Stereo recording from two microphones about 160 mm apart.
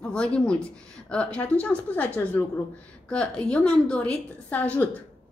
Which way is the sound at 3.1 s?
5° left (ahead or behind).